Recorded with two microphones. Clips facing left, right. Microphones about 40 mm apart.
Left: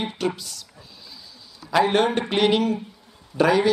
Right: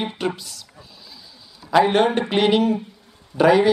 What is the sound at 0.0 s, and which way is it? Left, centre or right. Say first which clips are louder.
Speech: right 1 dB; centre.